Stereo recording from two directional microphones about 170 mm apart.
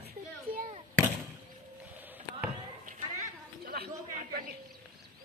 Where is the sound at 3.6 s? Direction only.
65° right (ahead or behind).